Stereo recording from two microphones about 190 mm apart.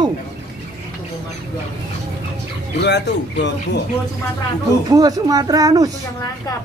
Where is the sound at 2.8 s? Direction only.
65° left (ahead or behind).